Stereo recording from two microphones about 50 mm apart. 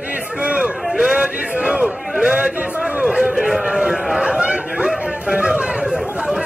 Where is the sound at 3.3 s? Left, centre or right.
Centre.